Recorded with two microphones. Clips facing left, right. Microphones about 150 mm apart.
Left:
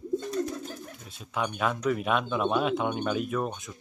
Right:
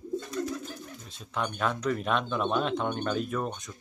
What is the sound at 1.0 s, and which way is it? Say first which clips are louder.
Speech: left 2 dB; 5° left (ahead or behind).